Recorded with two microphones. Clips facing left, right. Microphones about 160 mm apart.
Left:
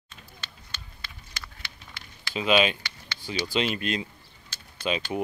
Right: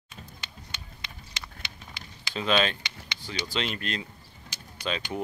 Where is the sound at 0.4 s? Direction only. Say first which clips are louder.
Right 1 dB; 15° right (ahead or behind).